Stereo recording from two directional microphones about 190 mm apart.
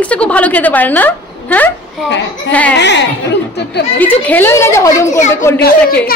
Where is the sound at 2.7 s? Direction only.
65° left (ahead or behind).